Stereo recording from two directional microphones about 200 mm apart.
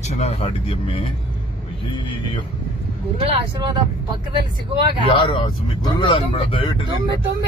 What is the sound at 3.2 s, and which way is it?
Speech, 25° right (ahead or behind).